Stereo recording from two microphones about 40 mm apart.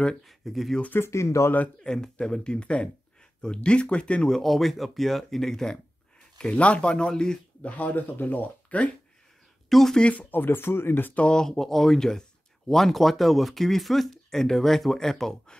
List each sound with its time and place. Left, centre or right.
0.2 s speech: centre
1.8 s speech: centre
4.3 s speech: centre
6.3 s speech: left
7.6 s speech: left
8.6 s a sound: left
9.7 s speech: centre
10.3 s speech: left
11.1 s speech: left
11.4 s speech: centre